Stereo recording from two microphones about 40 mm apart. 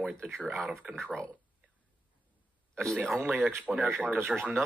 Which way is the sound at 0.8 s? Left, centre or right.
Right.